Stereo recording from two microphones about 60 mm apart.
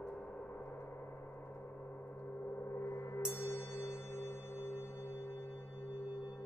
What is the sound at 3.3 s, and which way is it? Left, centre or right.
Music, left.